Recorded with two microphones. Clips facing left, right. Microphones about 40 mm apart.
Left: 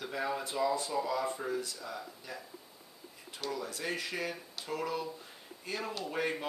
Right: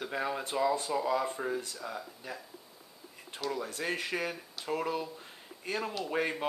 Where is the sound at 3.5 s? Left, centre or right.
Right.